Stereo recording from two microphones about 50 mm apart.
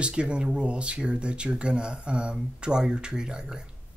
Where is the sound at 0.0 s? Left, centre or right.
Right.